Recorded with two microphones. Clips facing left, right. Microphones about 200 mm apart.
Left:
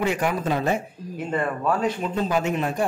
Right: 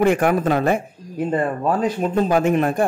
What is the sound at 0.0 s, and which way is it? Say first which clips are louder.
Speech: right 7 dB; 55° right (ahead or behind).